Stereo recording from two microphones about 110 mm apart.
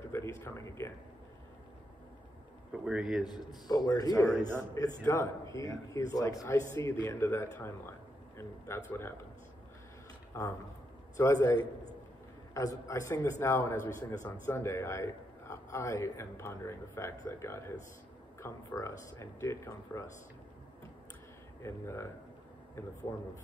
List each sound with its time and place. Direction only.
0.1 s speech: 25° left (ahead or behind)
2.7 s speech: 5° right (ahead or behind)
3.3 s a man's voice: 40° left (ahead or behind)
10.3 s a man's voice: 25° left (ahead or behind)
12.5 s a man's voice: 30° left (ahead or behind)
21.6 s a man's voice: 25° left (ahead or behind)